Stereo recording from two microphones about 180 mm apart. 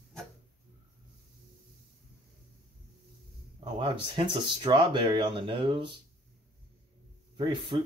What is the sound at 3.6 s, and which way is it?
Speech, 30° right (ahead or behind).